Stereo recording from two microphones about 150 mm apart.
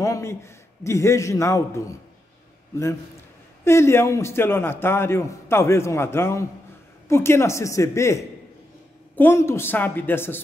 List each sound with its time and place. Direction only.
0.0 s a man's voice: 20° left (ahead or behind)
3.6 s a man's voice: 15° left (ahead or behind)